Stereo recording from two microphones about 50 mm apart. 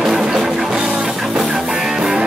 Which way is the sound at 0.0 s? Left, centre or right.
Centre.